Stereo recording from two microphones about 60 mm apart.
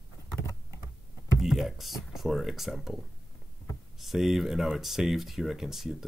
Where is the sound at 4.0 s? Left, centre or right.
Centre.